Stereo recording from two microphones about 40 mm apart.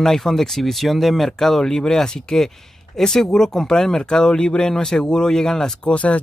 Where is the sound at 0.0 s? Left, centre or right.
Centre.